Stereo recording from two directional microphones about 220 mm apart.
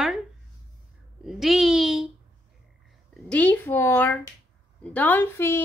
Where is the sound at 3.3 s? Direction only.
5° left (ahead or behind).